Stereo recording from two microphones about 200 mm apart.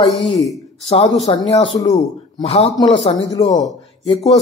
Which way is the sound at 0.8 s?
30° left (ahead or behind).